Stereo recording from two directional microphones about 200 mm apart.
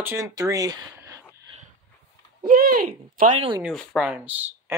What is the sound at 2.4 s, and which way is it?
Speech, 45° right (ahead or behind).